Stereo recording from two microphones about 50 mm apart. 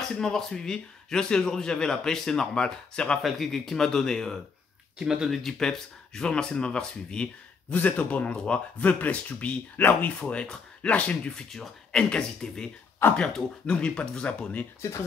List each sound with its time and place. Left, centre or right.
0.1 s a man's voice: centre
3.2 s a man's voice: centre
5.0 s speech: centre
5.3 s a man's voice: centre; by 10.1 s left
10.1 s speech: left
11.5 s a man's voice: centre; by 14.4 s left
14.8 s speech: left